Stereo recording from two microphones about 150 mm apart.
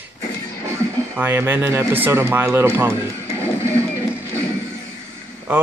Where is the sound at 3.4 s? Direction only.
20° right (ahead or behind).